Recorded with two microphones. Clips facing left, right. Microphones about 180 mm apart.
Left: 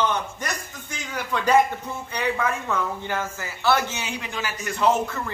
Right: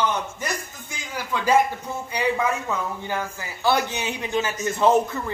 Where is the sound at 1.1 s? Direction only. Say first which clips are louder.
Even; 10° right (ahead or behind).